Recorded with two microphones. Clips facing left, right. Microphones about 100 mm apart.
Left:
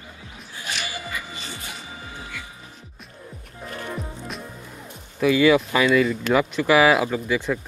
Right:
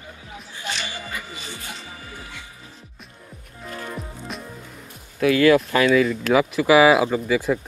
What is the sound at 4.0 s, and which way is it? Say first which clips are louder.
Music: left 1 dB; centre (ahead or behind).